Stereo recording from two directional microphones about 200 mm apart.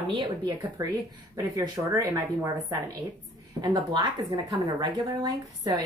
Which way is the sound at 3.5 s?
20° right (ahead or behind).